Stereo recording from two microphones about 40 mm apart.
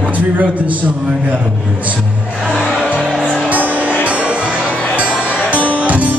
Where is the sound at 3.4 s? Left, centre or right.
Right.